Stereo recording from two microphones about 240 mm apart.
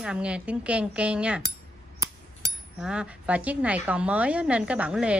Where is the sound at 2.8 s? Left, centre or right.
Centre.